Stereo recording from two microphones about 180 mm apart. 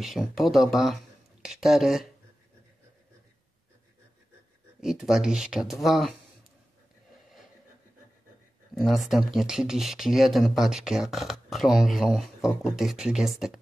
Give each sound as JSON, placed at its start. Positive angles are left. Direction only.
{"t": 0.0, "sound": "speech", "side_deg": 0}
{"t": 4.7, "sound": "speech", "side_deg": 0}
{"t": 8.7, "sound": "speech", "side_deg": 0}